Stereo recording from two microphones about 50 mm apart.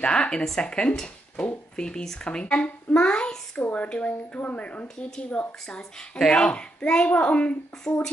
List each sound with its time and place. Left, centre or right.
0.0 s a child's voice: centre
0.9 s a sound: centre
1.8 s a child's voice: centre
3.5 s a child's voice: left
5.8 s a child's voice: centre